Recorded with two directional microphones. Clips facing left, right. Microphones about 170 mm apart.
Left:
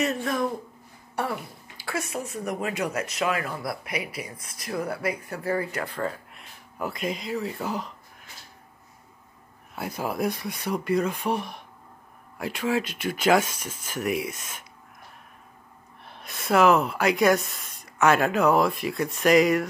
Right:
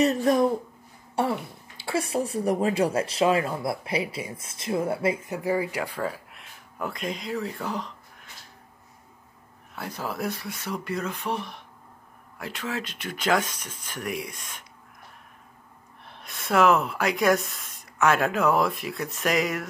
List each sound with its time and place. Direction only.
0.0 s speech: 35° right (ahead or behind)
1.2 s speech: 25° right (ahead or behind); by 7.9 s 5° left (ahead or behind)
9.8 s speech: 10° left (ahead or behind)
16.1 s speech: centre (ahead or behind)